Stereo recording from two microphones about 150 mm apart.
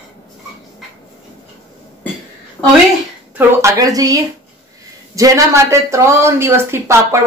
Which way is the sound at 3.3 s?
20° right (ahead or behind).